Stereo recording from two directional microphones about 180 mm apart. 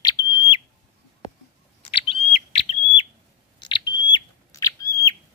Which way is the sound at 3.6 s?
25° left (ahead or behind).